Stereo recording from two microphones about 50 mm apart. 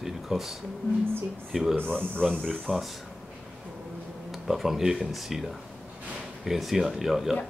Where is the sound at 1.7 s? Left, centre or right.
Centre.